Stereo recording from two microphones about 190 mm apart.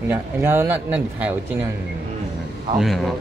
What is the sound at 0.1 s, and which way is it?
Speech, 10° right (ahead or behind).